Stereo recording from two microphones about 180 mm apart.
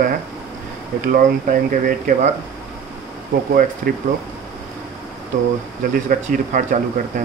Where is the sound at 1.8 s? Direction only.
45° right (ahead or behind).